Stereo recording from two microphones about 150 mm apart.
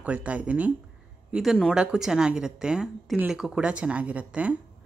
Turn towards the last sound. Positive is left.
turn(degrees=-10)  # may be behind; listen again after turning